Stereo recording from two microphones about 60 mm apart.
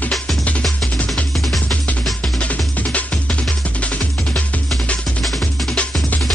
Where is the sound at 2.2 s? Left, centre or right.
Left.